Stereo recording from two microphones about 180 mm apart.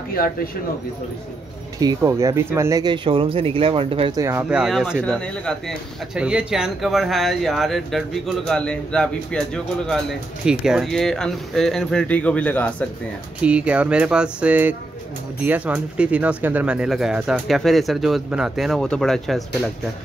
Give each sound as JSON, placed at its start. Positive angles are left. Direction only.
{"t": 0.1, "sound": "speech", "side_deg": 55}
{"t": 1.8, "sound": "speech", "side_deg": -20}
{"t": 4.2, "sound": "speech", "side_deg": -15}
{"t": 13.4, "sound": "speech", "side_deg": -5}